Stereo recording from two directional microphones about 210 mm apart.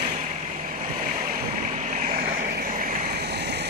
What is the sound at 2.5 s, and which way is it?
Vehicle, 40° right (ahead or behind).